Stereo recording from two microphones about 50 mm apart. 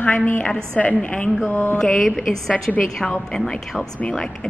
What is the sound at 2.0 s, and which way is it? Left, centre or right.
A woman's voice, centre.